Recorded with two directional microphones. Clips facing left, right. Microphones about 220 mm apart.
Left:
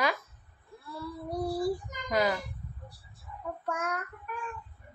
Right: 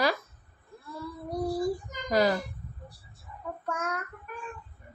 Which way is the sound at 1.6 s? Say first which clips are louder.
Right 1 dB; 35° right (ahead or behind).